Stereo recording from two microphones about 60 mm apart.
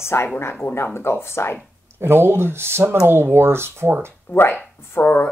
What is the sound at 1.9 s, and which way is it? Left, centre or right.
Speech, right.